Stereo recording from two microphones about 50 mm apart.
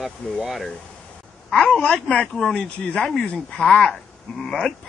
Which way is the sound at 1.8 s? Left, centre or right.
Left.